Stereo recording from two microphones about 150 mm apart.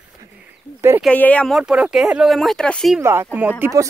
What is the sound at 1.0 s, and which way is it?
Speech, 10° left (ahead or behind).